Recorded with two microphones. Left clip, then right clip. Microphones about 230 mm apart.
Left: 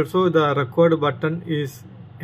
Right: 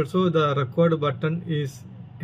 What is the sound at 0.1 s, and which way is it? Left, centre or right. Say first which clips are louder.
Speech: left 4 dB; centre.